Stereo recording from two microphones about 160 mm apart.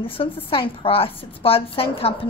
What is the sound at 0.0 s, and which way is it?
Speech, 35° left (ahead or behind).